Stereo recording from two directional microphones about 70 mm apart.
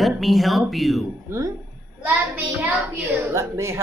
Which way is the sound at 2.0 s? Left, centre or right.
Right.